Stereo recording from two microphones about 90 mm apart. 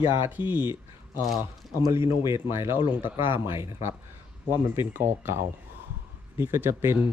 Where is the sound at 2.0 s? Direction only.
60° left (ahead or behind).